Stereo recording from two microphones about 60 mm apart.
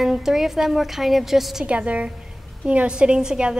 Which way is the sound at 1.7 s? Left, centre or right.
Right.